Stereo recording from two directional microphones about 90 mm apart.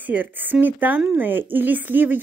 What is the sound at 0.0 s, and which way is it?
A woman's voice, 20° right (ahead or behind).